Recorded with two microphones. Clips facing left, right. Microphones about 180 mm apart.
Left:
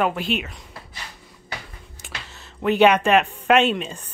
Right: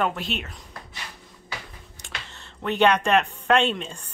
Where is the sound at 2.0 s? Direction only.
5° left (ahead or behind).